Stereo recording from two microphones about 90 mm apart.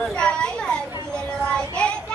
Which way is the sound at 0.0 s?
10° left (ahead or behind).